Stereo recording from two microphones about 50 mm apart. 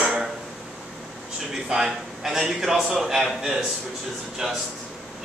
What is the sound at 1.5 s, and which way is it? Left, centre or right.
A man's voice, centre.